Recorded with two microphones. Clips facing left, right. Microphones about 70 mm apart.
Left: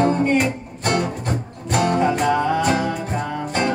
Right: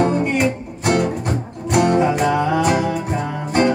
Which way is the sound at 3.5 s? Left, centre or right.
Right.